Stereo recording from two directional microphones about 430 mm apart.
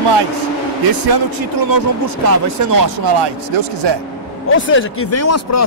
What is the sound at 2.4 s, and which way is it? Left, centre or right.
Speech, right.